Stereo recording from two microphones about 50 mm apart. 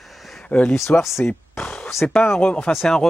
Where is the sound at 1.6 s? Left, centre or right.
Left.